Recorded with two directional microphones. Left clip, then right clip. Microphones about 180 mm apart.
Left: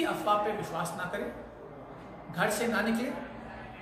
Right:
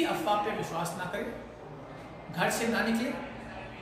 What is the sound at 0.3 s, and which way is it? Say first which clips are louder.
Speech: left 2 dB; centre (ahead or behind).